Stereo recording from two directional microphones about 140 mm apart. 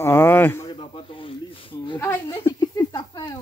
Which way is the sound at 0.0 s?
15° left (ahead or behind).